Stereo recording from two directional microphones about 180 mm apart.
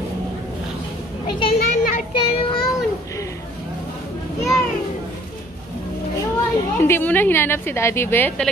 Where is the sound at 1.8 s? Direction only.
45° left (ahead or behind).